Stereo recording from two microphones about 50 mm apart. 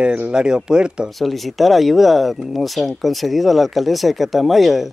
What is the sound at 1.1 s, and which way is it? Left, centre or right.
Speech, centre.